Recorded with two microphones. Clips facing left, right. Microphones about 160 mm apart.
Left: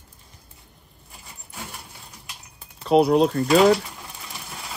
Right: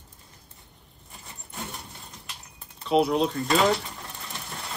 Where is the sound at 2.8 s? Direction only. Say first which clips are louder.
Left 5 dB; 40° left (ahead or behind).